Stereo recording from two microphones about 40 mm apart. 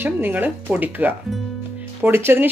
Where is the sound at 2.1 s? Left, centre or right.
Right.